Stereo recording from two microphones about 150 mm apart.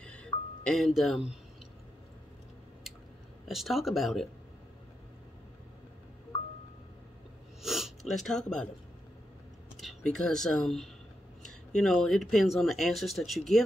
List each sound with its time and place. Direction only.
0.0 s music: 5° left (ahead or behind)
3.4 s speech: centre (ahead or behind)
7.6 s a sound: centre (ahead or behind)
9.8 s speech: centre (ahead or behind)